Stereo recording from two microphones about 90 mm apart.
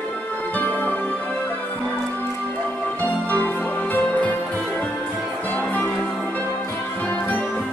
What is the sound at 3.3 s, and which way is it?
Music, 20° left (ahead or behind).